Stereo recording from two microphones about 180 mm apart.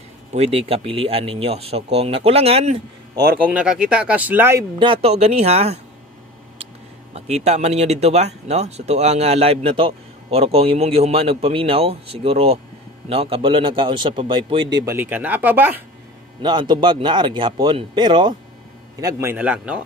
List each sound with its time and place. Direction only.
0.3 s speech: 35° right (ahead or behind)
3.2 s speech: 5° right (ahead or behind)
4.7 s speech: 30° right (ahead or behind)
7.2 s speech: 35° right (ahead or behind)
14.9 s speech: 10° right (ahead or behind)
16.4 s speech: 25° right (ahead or behind); by 19.8 s 5° right (ahead or behind)